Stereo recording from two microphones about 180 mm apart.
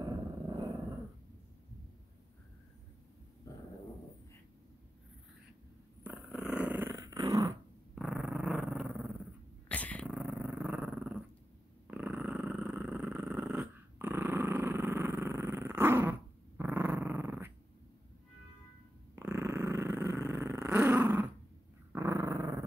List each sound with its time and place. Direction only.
0.0 s dog: 20° right (ahead or behind)
3.5 s a sound: 20° left (ahead or behind)
6.0 s dog: 5° right (ahead or behind)
7.9 s dog: 5° right (ahead or behind)
9.7 s cat: 5° left (ahead or behind)
10.0 s dog: 10° right (ahead or behind)
11.9 s purr: 5° right (ahead or behind)
19.1 s purr: 15° right (ahead or behind)
21.9 s dog: 15° right (ahead or behind)